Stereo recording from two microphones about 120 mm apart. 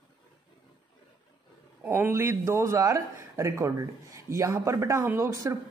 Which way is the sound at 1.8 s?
15° right (ahead or behind).